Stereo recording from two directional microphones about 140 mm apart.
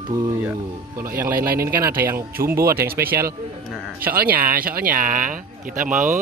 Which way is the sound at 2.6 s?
90° right.